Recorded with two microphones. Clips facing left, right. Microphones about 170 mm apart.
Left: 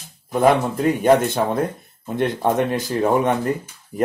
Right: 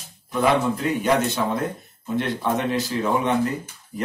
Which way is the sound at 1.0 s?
50° left (ahead or behind).